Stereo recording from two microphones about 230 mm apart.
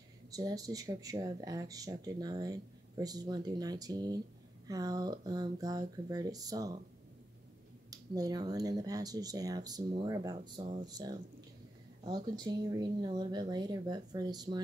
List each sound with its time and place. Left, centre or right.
0.3 s speech: centre
7.9 s speech: centre
12.0 s speech: centre